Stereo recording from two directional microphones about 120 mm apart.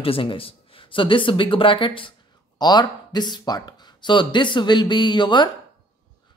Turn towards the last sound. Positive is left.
turn(degrees=40)  # may be behind; listen again after turning